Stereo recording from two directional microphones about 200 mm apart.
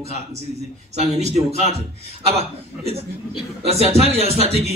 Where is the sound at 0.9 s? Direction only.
35° right (ahead or behind).